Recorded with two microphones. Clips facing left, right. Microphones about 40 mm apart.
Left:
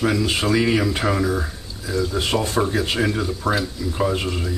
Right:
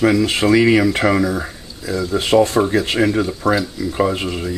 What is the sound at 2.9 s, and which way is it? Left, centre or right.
Speech, right.